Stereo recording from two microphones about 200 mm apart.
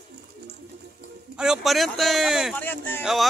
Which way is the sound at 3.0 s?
Centre (ahead or behind).